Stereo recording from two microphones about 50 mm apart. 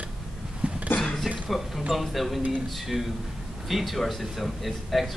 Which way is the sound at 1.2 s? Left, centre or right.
Right.